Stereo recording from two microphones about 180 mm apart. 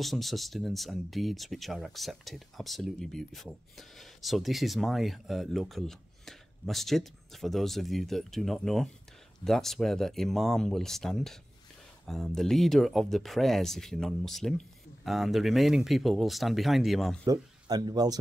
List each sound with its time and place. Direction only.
0.0 s speech: centre (ahead or behind)
17.2 s speech: 20° right (ahead or behind)